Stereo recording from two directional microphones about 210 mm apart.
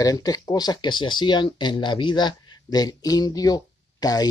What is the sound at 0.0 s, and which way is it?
Speech, 15° left (ahead or behind).